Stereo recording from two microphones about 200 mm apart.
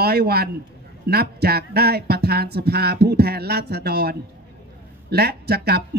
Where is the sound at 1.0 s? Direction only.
50° right (ahead or behind).